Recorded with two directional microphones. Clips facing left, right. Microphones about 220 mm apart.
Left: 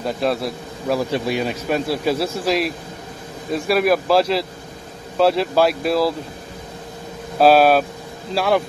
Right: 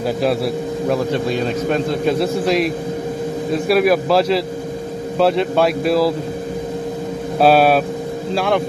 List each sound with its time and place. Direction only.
0.0 s a man's voice: centre (ahead or behind)
1.1 s a man's voice: 10° left (ahead or behind)
7.3 s a man's voice: centre (ahead or behind)